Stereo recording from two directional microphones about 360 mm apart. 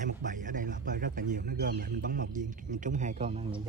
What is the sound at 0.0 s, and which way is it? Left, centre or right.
A man's voice, right.